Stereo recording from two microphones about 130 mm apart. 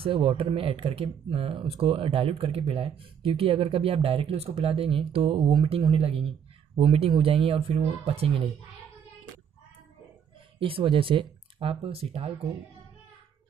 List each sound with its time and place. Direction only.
0.0 s speech: 45° right (ahead or behind)
10.6 s speech: 45° right (ahead or behind)